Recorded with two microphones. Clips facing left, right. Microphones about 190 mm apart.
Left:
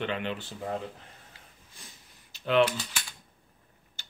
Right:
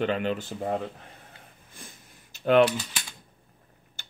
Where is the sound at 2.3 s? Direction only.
50° right (ahead or behind).